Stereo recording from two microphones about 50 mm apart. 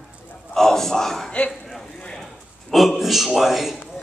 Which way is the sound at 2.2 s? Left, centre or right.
Centre.